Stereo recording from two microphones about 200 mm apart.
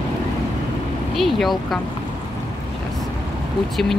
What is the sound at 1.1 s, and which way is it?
Speech, centre (ahead or behind).